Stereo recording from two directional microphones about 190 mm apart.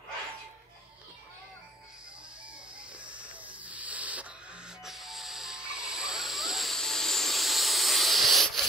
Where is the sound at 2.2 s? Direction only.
5° right (ahead or behind).